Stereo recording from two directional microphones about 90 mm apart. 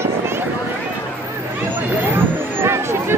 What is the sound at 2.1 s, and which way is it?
Vehicle, 30° right (ahead or behind).